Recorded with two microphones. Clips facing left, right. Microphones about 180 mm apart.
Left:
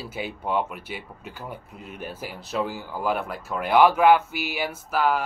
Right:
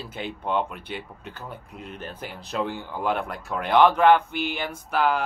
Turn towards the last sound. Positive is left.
turn(degrees=5)  # may be behind; listen again after turning